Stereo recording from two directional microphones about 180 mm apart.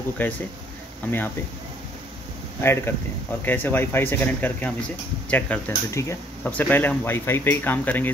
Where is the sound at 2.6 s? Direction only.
15° left (ahead or behind).